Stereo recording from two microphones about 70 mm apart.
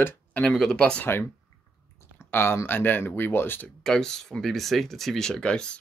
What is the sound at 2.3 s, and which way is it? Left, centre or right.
Speech, left.